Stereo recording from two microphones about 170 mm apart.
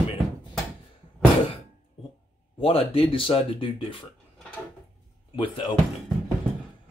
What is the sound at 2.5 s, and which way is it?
Speech, 35° left (ahead or behind).